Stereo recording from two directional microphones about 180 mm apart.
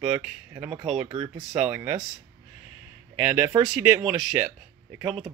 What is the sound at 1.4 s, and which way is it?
Speech, 5° right (ahead or behind).